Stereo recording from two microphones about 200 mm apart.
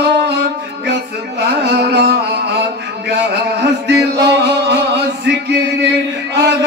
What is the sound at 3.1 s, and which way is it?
Music, 55° right (ahead or behind).